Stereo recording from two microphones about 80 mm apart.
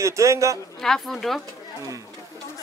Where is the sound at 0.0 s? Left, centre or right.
Right.